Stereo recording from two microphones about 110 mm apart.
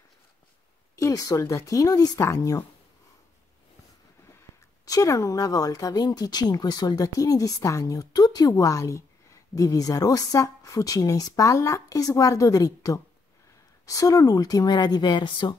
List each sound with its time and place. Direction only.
0.9 s speech: 30° left (ahead or behind)
4.3 s speech: 30° left (ahead or behind); by 15.5 s 45° left (ahead or behind)